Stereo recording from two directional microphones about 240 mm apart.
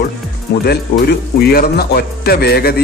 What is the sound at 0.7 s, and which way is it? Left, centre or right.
A man's voice, left.